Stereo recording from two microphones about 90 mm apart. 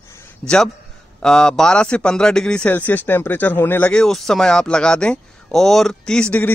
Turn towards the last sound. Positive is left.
turn(degrees=10)  # may be behind; listen again after turning